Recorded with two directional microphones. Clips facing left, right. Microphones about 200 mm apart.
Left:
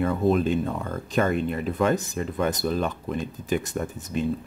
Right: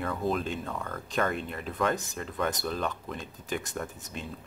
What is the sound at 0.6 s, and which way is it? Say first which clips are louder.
Speech: left 7 dB; 20° left (ahead or behind).